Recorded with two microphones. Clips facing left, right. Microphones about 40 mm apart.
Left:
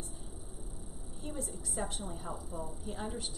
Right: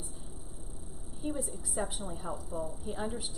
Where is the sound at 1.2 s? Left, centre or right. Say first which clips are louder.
Right 5 dB; centre.